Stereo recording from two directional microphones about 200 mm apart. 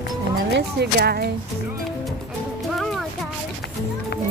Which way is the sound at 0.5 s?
55° right (ahead or behind).